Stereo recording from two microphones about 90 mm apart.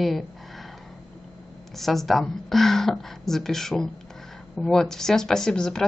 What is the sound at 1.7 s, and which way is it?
Speech, centre (ahead or behind).